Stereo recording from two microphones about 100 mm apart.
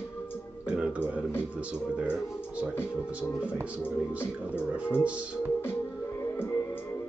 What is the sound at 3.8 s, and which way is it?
Music, 20° left (ahead or behind).